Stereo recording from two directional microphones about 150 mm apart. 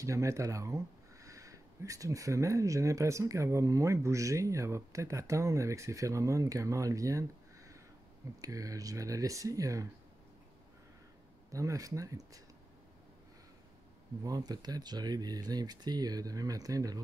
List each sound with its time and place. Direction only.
0.0 s speech: 20° right (ahead or behind)
11.5 s speech: 20° right (ahead or behind)
14.2 s speech: 25° right (ahead or behind)